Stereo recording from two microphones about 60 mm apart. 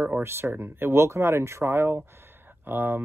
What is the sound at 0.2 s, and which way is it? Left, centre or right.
Speech, right.